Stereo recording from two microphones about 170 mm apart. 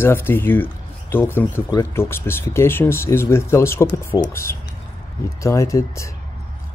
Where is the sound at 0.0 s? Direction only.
15° left (ahead or behind).